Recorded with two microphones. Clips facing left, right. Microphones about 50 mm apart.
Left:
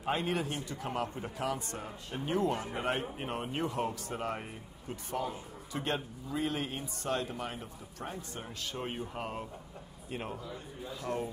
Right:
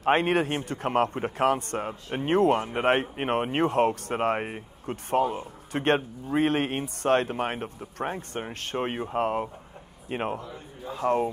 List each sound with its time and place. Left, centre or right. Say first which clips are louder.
0.0 s a man's voice: right 10 dB; right